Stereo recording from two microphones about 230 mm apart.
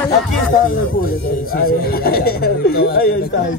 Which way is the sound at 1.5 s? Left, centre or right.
Left.